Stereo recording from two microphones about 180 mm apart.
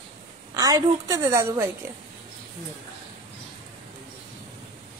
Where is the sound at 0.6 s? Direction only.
20° right (ahead or behind).